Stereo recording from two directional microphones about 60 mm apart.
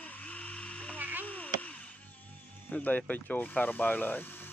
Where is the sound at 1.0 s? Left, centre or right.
Right.